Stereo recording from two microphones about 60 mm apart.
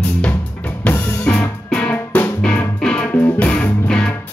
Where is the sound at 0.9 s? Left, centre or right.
Left.